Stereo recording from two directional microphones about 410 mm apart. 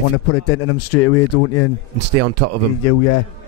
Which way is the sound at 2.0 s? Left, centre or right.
Right.